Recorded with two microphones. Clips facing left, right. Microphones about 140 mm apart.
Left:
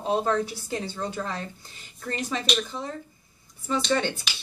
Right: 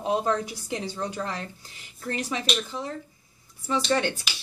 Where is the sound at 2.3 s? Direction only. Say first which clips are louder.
Left 1 dB; 5° right (ahead or behind).